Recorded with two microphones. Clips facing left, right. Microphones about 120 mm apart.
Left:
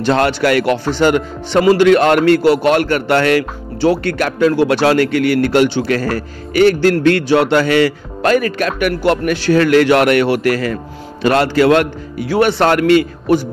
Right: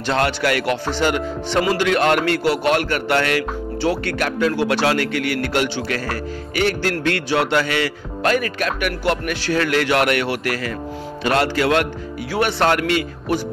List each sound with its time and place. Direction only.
0.0 s a man's voice: 45° left (ahead or behind)